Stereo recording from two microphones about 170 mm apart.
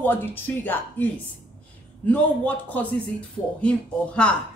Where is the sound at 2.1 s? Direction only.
10° left (ahead or behind).